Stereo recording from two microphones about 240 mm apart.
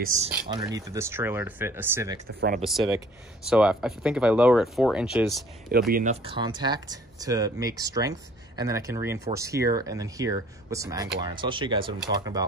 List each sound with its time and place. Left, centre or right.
0.0 s speech: right
0.7 s speech: centre
5.7 s speech: right
6.2 s speech: centre